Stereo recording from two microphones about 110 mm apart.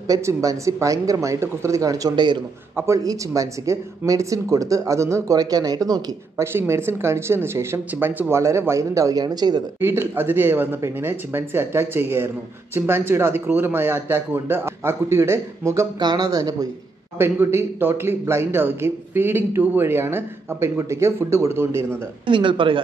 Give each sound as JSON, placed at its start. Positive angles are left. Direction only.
{"t": 0.1, "sound": "a man's voice", "side_deg": -30}
{"t": 2.7, "sound": "speech", "side_deg": -25}
{"t": 6.7, "sound": "a man's voice", "side_deg": -20}
{"t": 9.8, "sound": "a man's voice", "side_deg": -20}
{"t": 16.0, "sound": "speech", "side_deg": -35}
{"t": 17.2, "sound": "a man's voice", "side_deg": -25}
{"t": 22.2, "sound": "speech", "side_deg": -50}